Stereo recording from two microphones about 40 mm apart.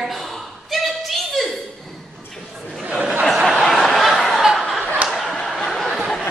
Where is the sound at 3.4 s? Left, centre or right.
Centre.